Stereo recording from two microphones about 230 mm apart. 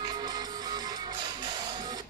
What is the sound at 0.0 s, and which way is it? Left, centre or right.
Music, centre.